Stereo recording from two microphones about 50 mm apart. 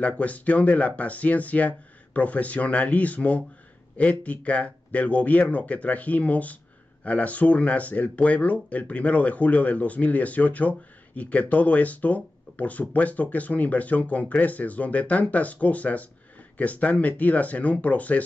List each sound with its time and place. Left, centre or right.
0.0 s speech: left